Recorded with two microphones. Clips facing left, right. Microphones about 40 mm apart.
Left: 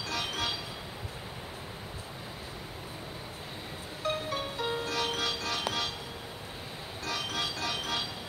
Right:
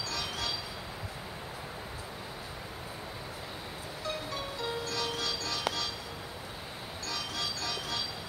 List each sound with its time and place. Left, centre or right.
0.1 s train: left
4.0 s music: left
7.1 s music: left